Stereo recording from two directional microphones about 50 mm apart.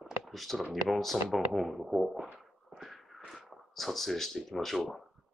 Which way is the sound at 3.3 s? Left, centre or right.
Centre.